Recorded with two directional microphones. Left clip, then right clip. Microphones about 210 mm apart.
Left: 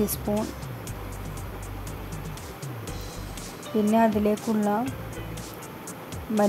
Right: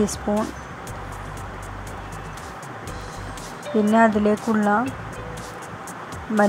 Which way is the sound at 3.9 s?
5° right (ahead or behind).